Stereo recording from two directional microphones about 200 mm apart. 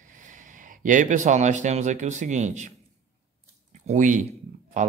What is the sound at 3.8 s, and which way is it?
Speech, 40° right (ahead or behind).